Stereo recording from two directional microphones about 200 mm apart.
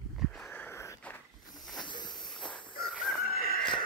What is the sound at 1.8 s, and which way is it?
Walk, 20° left (ahead or behind).